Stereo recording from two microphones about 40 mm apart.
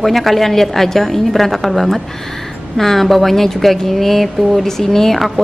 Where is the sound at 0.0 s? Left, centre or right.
Centre.